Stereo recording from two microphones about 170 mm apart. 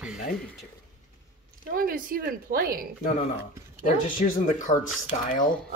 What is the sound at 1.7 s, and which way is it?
Speech, 55° right (ahead or behind).